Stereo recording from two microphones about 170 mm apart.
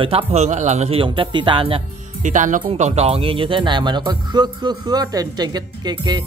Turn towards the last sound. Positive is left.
turn(degrees=-25)  # may be behind; listen again after turning